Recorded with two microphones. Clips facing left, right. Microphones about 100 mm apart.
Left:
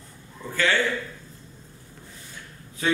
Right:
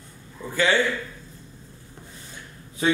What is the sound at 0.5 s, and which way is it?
Speech, 15° right (ahead or behind).